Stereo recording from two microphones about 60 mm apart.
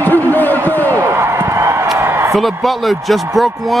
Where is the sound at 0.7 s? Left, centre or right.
Left.